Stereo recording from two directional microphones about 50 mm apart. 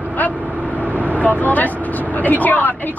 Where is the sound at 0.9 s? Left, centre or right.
Right.